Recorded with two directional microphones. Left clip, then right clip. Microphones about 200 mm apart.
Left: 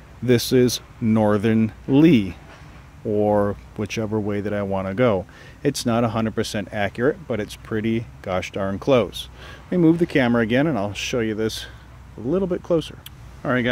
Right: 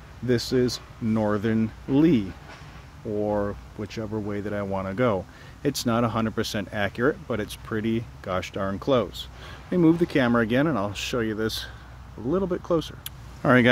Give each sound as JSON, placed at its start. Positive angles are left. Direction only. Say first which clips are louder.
{"t": 0.3, "sound": "speech", "louder": "left 6 dB", "side_deg": 30}
{"t": 13.4, "sound": "speech", "louder": "right 3 dB", "side_deg": -20}